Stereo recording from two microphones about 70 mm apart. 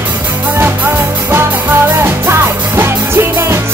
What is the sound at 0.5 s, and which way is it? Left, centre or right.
Music, right.